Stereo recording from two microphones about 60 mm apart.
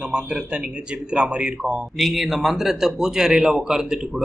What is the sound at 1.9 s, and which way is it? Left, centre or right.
Speech, centre.